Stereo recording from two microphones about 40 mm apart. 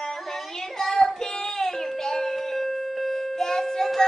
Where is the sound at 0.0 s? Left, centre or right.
Centre.